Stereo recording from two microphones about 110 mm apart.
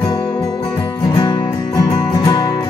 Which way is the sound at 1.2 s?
45° left (ahead or behind).